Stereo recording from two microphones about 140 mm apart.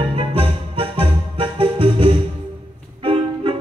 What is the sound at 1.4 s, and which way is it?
Music, 40° right (ahead or behind).